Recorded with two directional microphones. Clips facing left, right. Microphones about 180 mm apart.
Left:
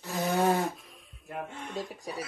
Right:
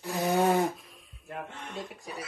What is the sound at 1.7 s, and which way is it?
Speech, 35° left (ahead or behind).